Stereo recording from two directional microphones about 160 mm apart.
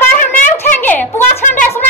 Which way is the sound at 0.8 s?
10° left (ahead or behind).